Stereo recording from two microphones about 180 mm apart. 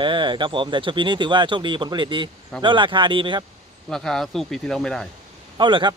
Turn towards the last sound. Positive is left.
turn(degrees=-25)  # may be behind; listen again after turning